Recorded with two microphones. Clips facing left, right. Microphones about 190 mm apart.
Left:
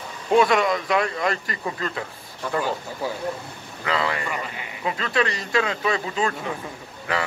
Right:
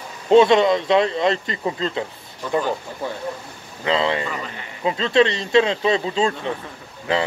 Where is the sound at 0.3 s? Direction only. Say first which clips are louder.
Right 5 dB; 25° right (ahead or behind).